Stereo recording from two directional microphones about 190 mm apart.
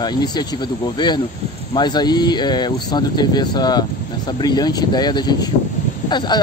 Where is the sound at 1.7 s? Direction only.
20° left (ahead or behind).